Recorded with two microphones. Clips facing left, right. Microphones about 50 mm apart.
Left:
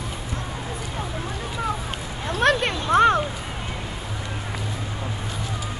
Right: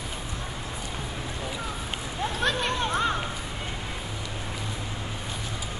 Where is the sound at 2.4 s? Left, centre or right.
Left.